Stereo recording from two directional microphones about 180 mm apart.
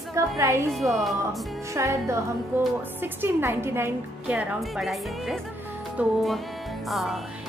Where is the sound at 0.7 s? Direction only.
Centre (ahead or behind).